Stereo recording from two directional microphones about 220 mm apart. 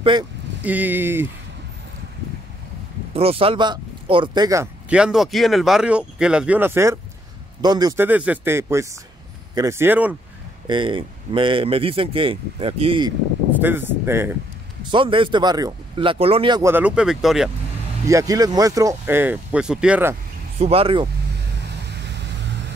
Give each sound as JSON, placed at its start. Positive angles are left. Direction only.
{"t": 0.6, "sound": "speech", "side_deg": -10}
{"t": 3.1, "sound": "speech", "side_deg": -25}
{"t": 10.7, "sound": "speech", "side_deg": -20}
{"t": 13.6, "sound": "speech", "side_deg": -10}
{"t": 14.9, "sound": "speech", "side_deg": -25}
{"t": 18.0, "sound": "speech", "side_deg": -15}
{"t": 20.5, "sound": "speech", "side_deg": -25}